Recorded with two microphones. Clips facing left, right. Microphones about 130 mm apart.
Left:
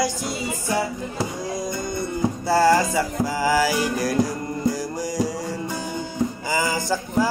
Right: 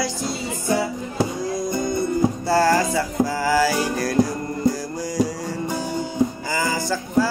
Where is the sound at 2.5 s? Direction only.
15° left (ahead or behind).